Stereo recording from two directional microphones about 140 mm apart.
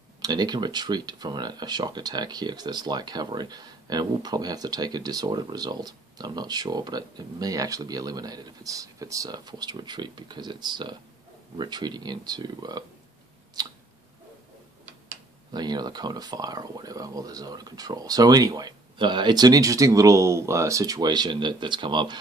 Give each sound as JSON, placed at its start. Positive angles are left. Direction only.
{"t": 0.2, "sound": "speech", "side_deg": -30}
{"t": 15.5, "sound": "speech", "side_deg": -30}